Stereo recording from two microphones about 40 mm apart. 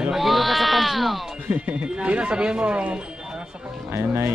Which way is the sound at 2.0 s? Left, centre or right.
Right.